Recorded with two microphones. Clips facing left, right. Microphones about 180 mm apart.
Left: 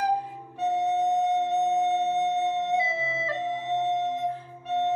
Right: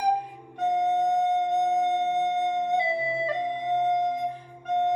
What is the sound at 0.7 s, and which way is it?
Music, 5° left (ahead or behind).